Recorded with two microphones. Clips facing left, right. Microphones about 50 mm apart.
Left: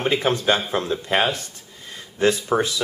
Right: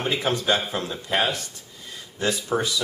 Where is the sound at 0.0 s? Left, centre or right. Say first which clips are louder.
Left 4 dB; left.